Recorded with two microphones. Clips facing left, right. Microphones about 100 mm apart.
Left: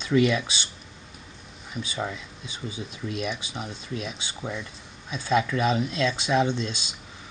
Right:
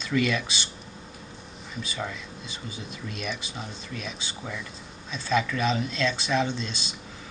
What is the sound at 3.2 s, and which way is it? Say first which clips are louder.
Speech: left 2 dB; 15° left (ahead or behind).